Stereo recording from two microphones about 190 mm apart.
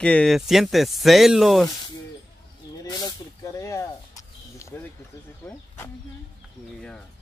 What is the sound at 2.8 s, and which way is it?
Snake, 20° left (ahead or behind).